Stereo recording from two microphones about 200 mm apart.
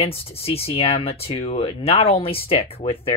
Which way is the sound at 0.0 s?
30° left (ahead or behind).